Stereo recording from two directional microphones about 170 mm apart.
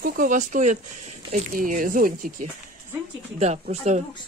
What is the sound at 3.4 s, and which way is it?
Speech, 40° right (ahead or behind).